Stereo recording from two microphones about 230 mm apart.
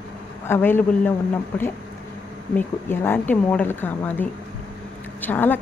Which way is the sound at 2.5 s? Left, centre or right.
Centre.